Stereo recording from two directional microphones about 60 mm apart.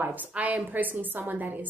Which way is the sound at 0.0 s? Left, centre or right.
Right.